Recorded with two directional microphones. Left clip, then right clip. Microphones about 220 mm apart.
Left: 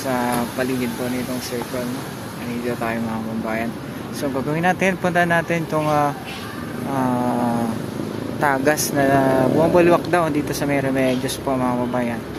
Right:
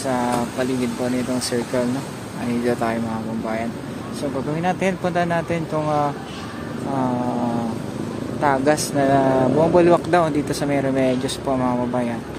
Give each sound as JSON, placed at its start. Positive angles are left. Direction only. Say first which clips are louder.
{"t": 0.0, "sound": "speech", "louder": "even", "side_deg": -5}
{"t": 2.6, "sound": "speech", "louder": "right 2 dB", "side_deg": -10}
{"t": 4.2, "sound": "speech", "louder": "left 3 dB", "side_deg": 0}
{"t": 8.4, "sound": "speech", "louder": "even", "side_deg": 0}